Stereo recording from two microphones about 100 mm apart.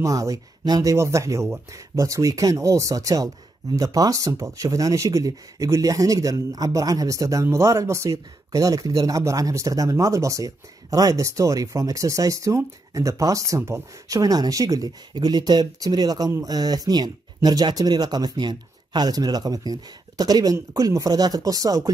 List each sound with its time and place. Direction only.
0.0 s speech: 35° right (ahead or behind)